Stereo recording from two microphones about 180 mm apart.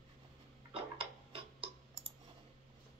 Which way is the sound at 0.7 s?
30° right (ahead or behind).